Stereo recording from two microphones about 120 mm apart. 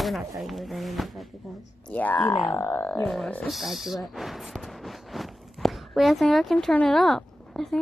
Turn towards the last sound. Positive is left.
turn(degrees=0)  # may be behind; listen again after turning